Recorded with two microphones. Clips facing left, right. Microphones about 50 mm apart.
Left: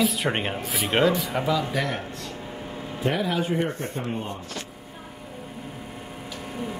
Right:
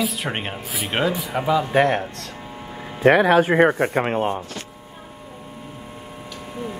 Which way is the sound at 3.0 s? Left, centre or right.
Right.